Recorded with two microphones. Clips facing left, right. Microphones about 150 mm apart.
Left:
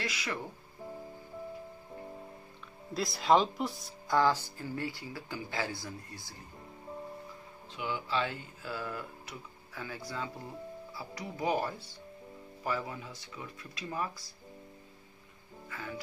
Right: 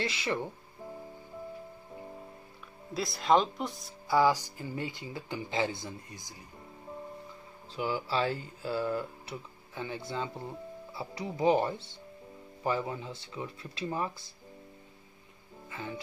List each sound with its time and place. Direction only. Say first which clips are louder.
0.0 s speech: right 5 dB; 25° right (ahead or behind)
2.9 s speech: even; centre (ahead or behind)
4.2 s speech: right 2 dB; 15° right (ahead or behind)
7.7 s speech: right 3 dB; 35° right (ahead or behind)
15.7 s speech: right 2 dB; 25° right (ahead or behind)